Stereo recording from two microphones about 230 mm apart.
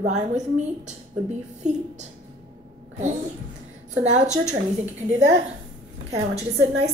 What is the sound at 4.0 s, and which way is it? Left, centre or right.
Speech, right.